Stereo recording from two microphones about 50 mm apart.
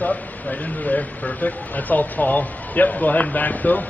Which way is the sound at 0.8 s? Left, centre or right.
Left.